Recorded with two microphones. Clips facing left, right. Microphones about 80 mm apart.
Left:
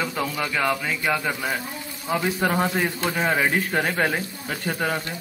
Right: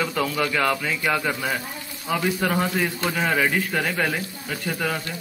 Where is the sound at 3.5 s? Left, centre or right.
Left.